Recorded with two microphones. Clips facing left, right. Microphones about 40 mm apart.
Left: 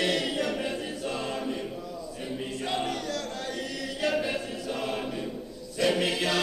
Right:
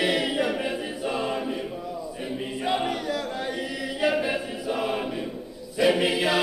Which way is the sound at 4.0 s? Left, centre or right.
Centre.